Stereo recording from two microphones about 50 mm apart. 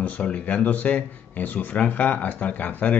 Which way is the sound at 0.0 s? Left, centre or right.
Left.